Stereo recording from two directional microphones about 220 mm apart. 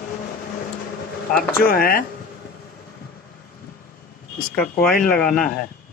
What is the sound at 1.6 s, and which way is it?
Speech, 40° left (ahead or behind).